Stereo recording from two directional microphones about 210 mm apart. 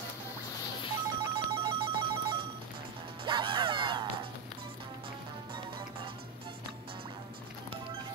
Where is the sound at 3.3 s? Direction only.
20° right (ahead or behind).